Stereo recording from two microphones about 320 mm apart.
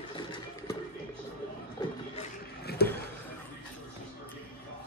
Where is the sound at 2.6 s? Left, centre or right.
Left.